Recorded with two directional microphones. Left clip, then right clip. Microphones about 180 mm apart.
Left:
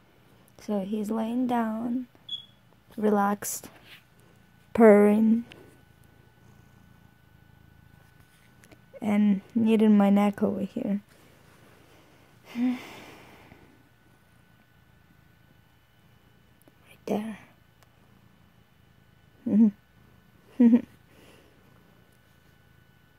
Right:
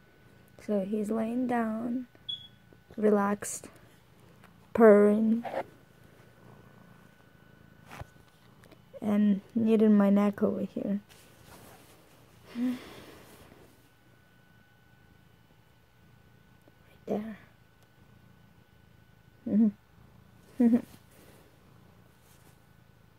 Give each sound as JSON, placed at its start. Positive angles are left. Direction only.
{"t": 0.6, "sound": "a woman's voice", "side_deg": 15}
{"t": 3.0, "sound": "a woman's voice", "side_deg": 10}
{"t": 4.7, "sound": "a woman's voice", "side_deg": 30}
{"t": 8.5, "sound": "a sound", "side_deg": 20}
{"t": 9.6, "sound": "a woman's voice", "side_deg": 20}
{"t": 12.4, "sound": "gasp", "side_deg": 20}
{"t": 17.0, "sound": "whispering", "side_deg": 30}
{"t": 20.5, "sound": "speech", "side_deg": 30}